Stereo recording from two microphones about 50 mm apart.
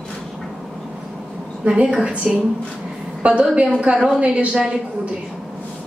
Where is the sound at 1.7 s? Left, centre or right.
Right.